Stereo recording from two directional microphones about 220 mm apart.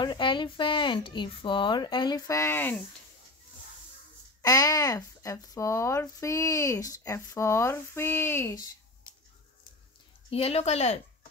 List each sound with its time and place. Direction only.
0.0 s speech: 20° left (ahead or behind)
4.4 s speech: 15° left (ahead or behind)
10.3 s speech: 25° left (ahead or behind)